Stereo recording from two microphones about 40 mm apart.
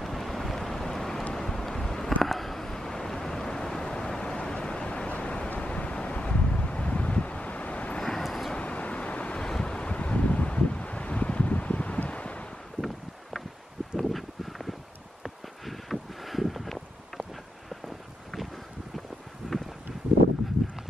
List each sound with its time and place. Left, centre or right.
0.0 s boat: centre
1.3 s a sound: centre
2.2 s vehicle: centre; by 5.5 s left
5.6 s wind noise: left
8.2 s vehicle: centre
8.5 s vehicle: left
9.5 s wind: left
12.8 s wind: centre
13.9 s a sound: centre
17.8 s vehicle: centre
19.4 s a sound: centre